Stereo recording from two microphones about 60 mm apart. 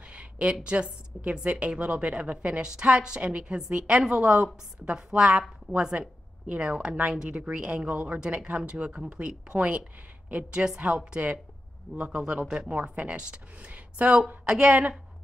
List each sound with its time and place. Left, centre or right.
0.0 s a sound: centre
0.7 s a woman's voice: right
12.0 s a woman's voice: centre